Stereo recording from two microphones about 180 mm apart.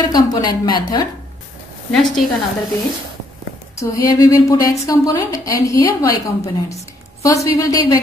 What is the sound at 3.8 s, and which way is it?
A woman's voice, 20° left (ahead or behind).